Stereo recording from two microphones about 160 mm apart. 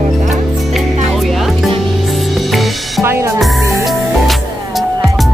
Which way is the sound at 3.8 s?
Centre (ahead or behind).